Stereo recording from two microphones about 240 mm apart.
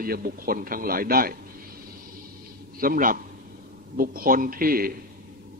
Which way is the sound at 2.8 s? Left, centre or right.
Right.